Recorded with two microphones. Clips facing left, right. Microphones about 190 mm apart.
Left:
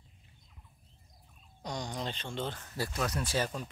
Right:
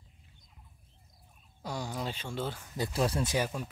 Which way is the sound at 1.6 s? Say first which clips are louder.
Right 1 dB; 5° right (ahead or behind).